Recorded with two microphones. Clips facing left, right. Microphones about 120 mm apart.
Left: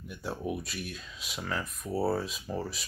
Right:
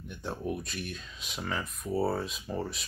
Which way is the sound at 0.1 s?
5° left (ahead or behind).